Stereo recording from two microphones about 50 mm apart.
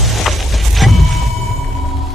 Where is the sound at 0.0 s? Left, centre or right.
Centre.